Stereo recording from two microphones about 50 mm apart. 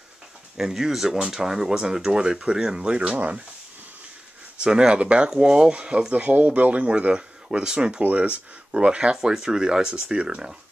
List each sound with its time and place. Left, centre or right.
0.6 s speech: centre; by 3.4 s right
4.6 s speech: centre
8.0 s speech: right